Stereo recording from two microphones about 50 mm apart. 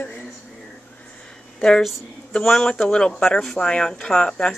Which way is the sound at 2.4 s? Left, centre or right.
Centre.